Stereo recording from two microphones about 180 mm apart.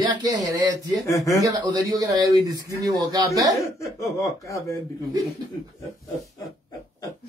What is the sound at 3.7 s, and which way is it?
Speech, 15° left (ahead or behind).